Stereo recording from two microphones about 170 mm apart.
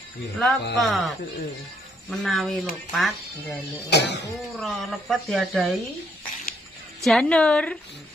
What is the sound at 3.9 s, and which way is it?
Speech, 80° left.